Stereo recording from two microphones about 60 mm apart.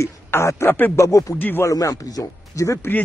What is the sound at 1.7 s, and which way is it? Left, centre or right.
Speech, left.